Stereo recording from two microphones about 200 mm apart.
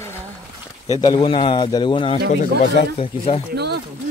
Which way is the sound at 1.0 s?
25° left (ahead or behind).